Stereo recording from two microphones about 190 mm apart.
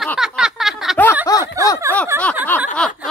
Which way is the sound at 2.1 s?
10° right (ahead or behind).